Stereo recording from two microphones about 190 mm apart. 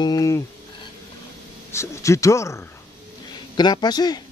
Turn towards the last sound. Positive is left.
turn(degrees=20)  # may be behind; listen again after turning